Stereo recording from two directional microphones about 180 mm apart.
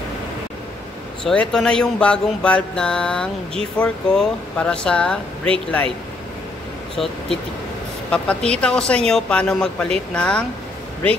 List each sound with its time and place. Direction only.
1.2 s speech: 5° left (ahead or behind)
7.0 s speech: centre (ahead or behind)